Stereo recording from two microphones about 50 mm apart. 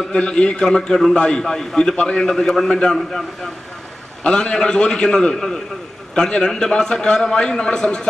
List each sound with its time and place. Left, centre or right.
0.1 s a man's voice: centre